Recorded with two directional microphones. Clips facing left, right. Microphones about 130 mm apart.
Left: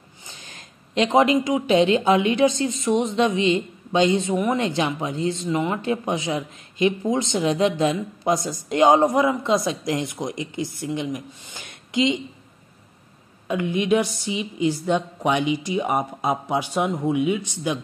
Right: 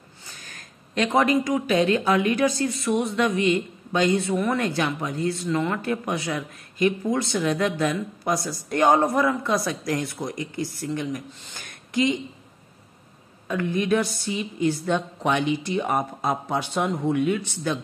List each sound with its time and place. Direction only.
0.2 s speech: 20° left (ahead or behind)
13.5 s a woman's voice: 15° left (ahead or behind)